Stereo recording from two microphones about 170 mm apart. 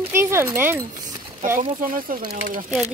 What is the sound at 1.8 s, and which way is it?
Speech, 55° right (ahead or behind).